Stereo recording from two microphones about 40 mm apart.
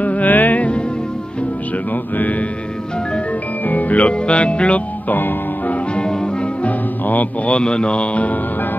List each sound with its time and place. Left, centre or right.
0.0 s music: left
3.6 s music: left
4.1 s speech: left
5.1 s music: left
6.6 s music: left
7.5 s speech: left